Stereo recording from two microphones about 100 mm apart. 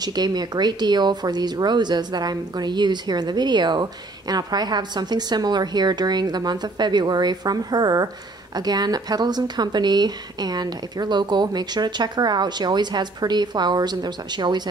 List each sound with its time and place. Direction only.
0.0 s speech: 45° right (ahead or behind)